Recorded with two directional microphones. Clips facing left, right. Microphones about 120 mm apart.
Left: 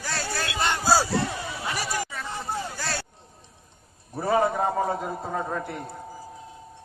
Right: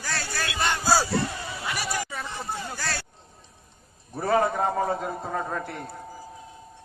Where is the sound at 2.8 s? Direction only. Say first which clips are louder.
Left 1 dB; 25° left (ahead or behind).